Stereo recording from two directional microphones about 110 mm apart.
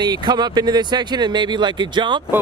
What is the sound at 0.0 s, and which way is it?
Speech, 40° right (ahead or behind).